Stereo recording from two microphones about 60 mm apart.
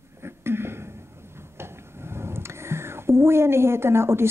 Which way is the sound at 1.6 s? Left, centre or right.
Right.